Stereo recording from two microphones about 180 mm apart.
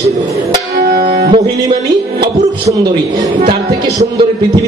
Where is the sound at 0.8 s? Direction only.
60° right (ahead or behind).